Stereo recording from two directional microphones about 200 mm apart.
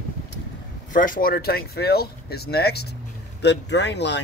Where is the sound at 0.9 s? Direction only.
45° left (ahead or behind); by 4.2 s 60° left (ahead or behind).